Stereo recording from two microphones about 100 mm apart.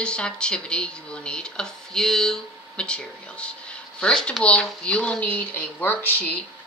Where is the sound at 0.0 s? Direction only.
10° left (ahead or behind).